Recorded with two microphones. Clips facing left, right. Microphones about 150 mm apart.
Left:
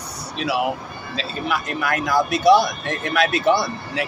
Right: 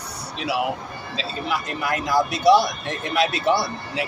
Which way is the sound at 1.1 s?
25° right (ahead or behind).